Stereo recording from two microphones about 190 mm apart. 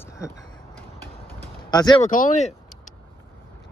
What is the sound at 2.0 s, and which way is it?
Speech, 45° left (ahead or behind).